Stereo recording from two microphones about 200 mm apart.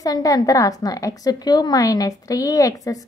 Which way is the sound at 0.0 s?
15° left (ahead or behind).